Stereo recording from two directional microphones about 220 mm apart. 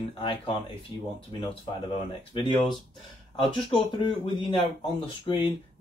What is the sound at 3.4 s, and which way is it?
Speech, 20° left (ahead or behind).